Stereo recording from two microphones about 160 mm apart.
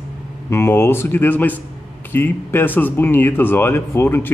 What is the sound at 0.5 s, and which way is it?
Speech, 15° left (ahead or behind).